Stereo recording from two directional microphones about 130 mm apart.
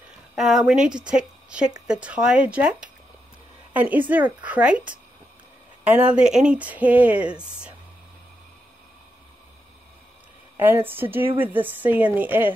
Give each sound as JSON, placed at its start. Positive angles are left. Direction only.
{"t": 0.4, "sound": "speech", "side_deg": 0}
{"t": 10.6, "sound": "speech", "side_deg": -15}